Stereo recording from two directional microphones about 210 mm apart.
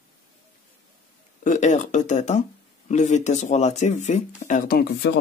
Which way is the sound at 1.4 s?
35° left (ahead or behind).